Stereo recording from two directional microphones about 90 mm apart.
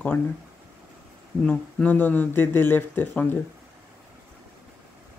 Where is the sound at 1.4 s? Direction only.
20° left (ahead or behind).